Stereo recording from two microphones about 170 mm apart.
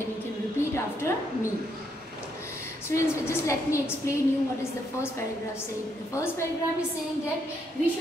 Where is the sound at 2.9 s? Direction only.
15° left (ahead or behind).